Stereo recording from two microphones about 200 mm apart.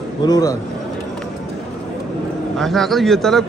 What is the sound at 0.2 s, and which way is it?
Speech, 20° left (ahead or behind).